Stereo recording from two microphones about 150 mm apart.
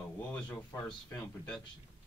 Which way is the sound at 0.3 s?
10° left (ahead or behind).